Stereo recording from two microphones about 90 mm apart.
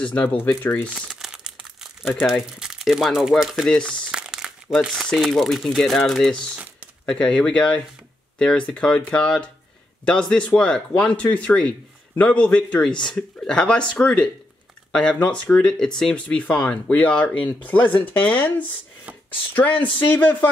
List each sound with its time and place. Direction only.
0.0 s speech: 15° left (ahead or behind)
0.8 s speech: 10° right (ahead or behind)
3.7 s speech: 10° left (ahead or behind)
4.1 s crumpling: 10° right (ahead or behind)
4.9 s speech: centre (ahead or behind)
6.5 s crumpling: 15° right (ahead or behind)
7.1 s speech: 10° left (ahead or behind)